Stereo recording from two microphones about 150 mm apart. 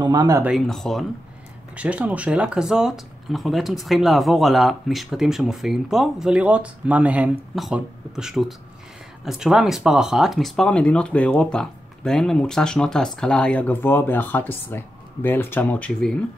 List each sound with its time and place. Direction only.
0.0 s speech: 30° right (ahead or behind)
0.4 s speech: centre (ahead or behind)
1.8 s speech: 10° right (ahead or behind)